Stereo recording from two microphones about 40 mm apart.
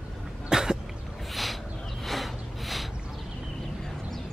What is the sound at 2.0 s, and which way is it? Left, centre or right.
Snort, centre.